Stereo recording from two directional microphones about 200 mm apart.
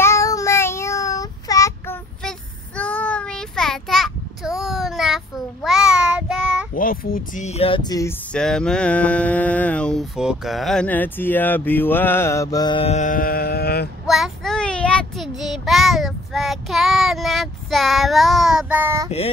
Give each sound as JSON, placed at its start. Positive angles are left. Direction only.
{"t": 0.0, "sound": "child singing", "side_deg": 15}
{"t": 2.2, "sound": "child singing", "side_deg": 5}
{"t": 6.7, "sound": "speech", "side_deg": 45}
{"t": 8.3, "sound": "a sound", "side_deg": 5}
{"t": 14.0, "sound": "child singing", "side_deg": 0}
{"t": 19.0, "sound": "speech", "side_deg": 30}